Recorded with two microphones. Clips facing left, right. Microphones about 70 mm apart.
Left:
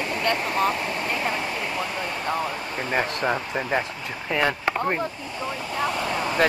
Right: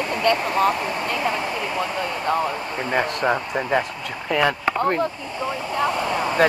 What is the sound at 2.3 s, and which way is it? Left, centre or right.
Speech, right.